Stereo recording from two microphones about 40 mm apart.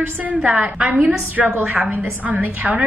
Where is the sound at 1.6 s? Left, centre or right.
Right.